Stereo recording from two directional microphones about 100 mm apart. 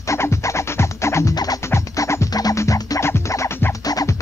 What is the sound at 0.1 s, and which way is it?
Music, 30° left (ahead or behind).